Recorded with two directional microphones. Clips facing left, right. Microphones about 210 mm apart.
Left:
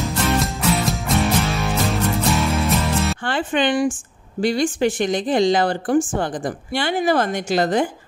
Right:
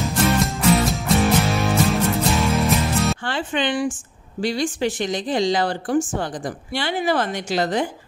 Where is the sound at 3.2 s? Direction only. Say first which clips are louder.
Left 3 dB; 50° left (ahead or behind).